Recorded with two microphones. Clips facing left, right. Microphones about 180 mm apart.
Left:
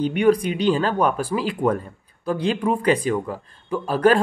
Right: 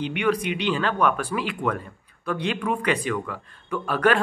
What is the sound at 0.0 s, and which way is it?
Speech, 40° left (ahead or behind).